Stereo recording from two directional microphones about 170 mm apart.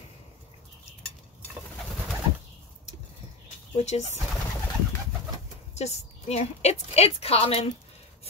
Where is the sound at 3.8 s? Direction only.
40° left (ahead or behind).